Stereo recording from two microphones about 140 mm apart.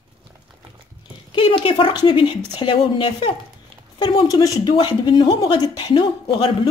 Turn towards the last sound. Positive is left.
turn(degrees=35)  # may be behind; listen again after turning